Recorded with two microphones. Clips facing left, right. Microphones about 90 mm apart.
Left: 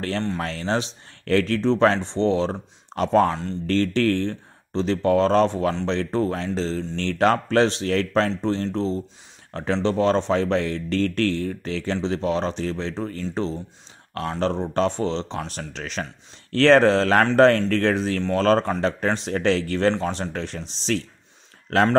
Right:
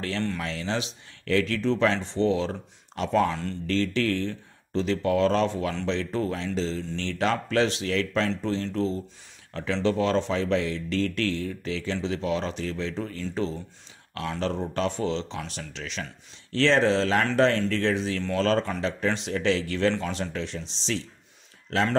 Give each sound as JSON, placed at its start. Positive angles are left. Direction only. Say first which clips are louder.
{"t": 0.4, "sound": "speech", "louder": "left 5 dB", "side_deg": 45}
{"t": 8.3, "sound": "speech", "louder": "left 4 dB", "side_deg": 30}